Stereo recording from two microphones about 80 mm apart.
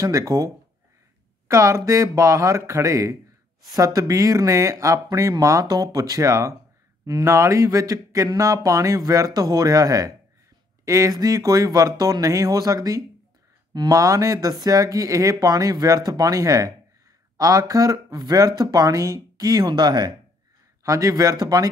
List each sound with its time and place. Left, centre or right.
0.0 s speech: right
1.5 s speech: right
20.8 s speech: right